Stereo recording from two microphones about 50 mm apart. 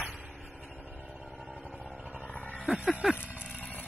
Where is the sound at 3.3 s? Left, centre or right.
Right.